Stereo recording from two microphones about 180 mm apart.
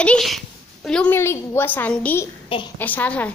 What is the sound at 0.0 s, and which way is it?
A woman's voice, 5° left (ahead or behind).